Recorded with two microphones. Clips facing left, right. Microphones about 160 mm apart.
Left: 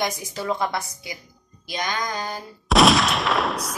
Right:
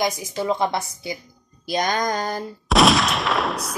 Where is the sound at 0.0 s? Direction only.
20° right (ahead or behind).